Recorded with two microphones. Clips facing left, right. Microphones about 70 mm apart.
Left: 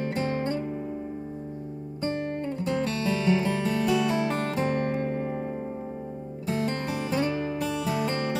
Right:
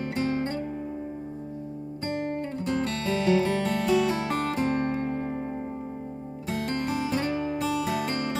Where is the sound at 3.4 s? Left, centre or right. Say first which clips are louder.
Right 2 dB; left.